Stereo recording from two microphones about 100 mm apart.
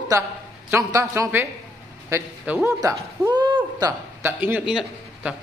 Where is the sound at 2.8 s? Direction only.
35° right (ahead or behind).